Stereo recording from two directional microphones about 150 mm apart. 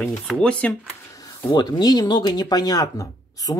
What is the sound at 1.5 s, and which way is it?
Speech, 25° left (ahead or behind).